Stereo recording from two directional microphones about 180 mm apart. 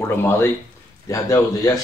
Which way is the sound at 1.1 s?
15° left (ahead or behind).